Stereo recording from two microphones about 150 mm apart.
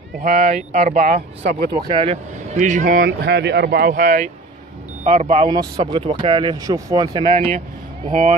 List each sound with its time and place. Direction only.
0.2 s speech: 60° right (ahead or behind)
1.8 s speech: 30° right (ahead or behind)
2.5 s speech: 55° right (ahead or behind)
5.0 s speech: 50° right (ahead or behind); by 7.2 s 25° right (ahead or behind)
8.1 s speech: 55° right (ahead or behind)